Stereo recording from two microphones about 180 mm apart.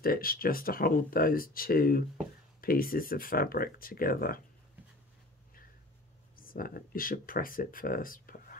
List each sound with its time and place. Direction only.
0.0 s speech: 55° left (ahead or behind)
6.3 s speech: 50° left (ahead or behind)